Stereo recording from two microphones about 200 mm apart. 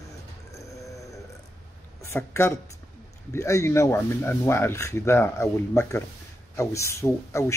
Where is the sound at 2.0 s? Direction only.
10° left (ahead or behind).